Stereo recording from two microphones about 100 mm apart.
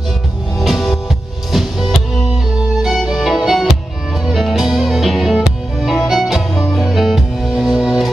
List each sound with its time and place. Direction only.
0.6 s music: centre (ahead or behind)